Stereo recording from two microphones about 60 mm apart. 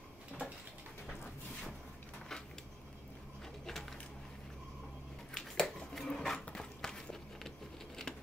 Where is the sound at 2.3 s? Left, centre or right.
Centre.